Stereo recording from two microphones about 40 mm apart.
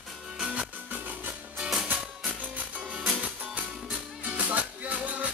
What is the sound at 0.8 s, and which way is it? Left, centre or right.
Music, right.